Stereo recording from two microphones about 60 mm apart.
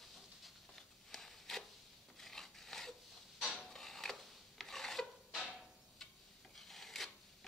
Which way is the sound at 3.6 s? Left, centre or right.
Centre.